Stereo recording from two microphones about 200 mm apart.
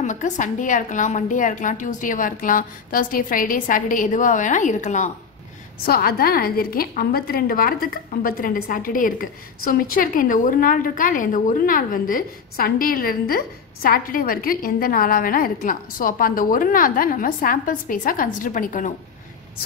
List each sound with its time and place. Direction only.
0.0 s a woman's voice: 40° left (ahead or behind)
5.9 s a woman's voice: 50° left (ahead or behind)